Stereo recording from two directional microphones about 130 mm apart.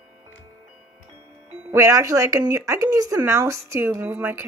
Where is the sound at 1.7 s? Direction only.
25° right (ahead or behind).